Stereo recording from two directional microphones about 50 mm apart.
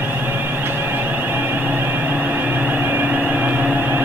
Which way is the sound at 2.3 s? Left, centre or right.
Right.